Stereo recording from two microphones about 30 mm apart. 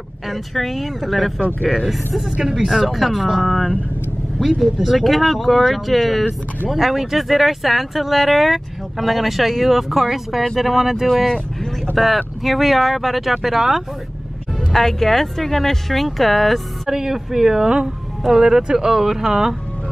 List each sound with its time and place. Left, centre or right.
0.3 s speech: centre
3.4 s speech: centre
4.4 s speech: centre
12.0 s speech: centre
14.7 s speech: centre
16.9 s speech: centre
18.4 s speech: right